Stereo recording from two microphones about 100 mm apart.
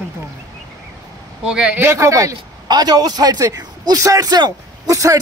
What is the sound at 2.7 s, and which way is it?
A man's voice, 40° right (ahead or behind).